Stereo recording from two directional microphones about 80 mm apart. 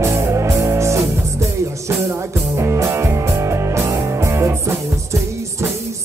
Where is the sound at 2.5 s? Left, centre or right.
Right.